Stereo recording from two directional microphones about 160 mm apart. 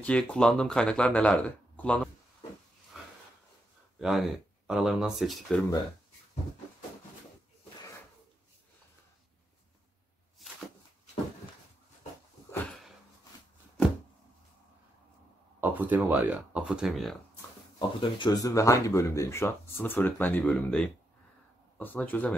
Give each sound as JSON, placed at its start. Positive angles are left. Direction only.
{"t": 0.0, "sound": "speech", "side_deg": 5}
{"t": 4.0, "sound": "speech", "side_deg": 0}
{"t": 15.6, "sound": "speech", "side_deg": -10}
{"t": 17.7, "sound": "speech", "side_deg": 30}